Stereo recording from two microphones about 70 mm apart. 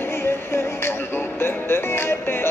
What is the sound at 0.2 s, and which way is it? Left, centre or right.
Music, left.